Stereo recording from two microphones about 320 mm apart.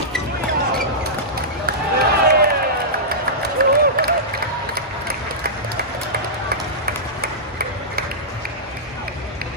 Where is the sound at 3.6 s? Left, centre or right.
Right.